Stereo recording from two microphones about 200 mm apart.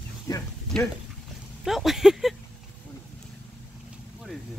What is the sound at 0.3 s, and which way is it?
Speech, 15° left (ahead or behind).